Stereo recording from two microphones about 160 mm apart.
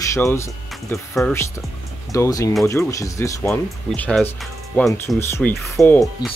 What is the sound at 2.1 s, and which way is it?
Speech, 20° left (ahead or behind).